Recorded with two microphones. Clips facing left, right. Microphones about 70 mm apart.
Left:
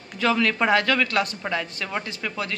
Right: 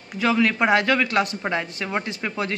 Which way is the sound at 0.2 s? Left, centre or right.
Centre.